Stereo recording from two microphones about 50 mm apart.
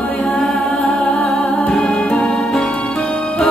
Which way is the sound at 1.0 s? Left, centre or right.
Left.